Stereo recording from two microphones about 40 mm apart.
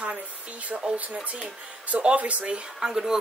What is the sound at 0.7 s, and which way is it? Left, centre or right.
Speech, right.